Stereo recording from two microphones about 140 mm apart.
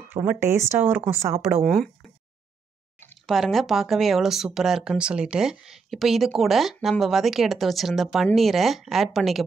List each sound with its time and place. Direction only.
0.1 s speech: 15° right (ahead or behind)
1.4 s speech: centre (ahead or behind)
3.3 s speech: centre (ahead or behind)